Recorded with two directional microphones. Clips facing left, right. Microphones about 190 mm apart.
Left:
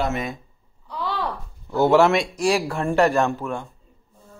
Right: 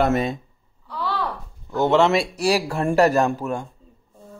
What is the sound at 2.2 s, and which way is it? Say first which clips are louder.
Speech: even; 35° right (ahead or behind).